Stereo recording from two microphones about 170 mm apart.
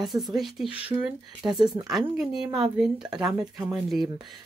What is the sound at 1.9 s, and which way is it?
Speech, centre (ahead or behind).